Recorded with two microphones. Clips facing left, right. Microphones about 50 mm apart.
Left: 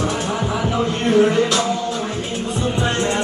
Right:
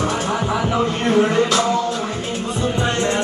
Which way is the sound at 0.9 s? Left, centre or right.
Centre.